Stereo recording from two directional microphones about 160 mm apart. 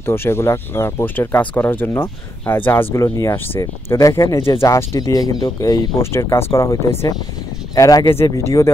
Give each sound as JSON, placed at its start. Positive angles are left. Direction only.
{"t": 0.0, "sound": "speech", "side_deg": 15}